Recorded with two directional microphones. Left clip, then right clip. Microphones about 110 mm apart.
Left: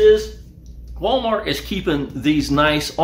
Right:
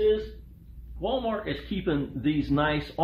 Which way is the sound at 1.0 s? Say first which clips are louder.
Left 10 dB; 20° right (ahead or behind).